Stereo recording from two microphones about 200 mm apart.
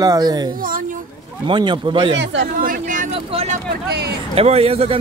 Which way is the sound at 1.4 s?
25° right (ahead or behind).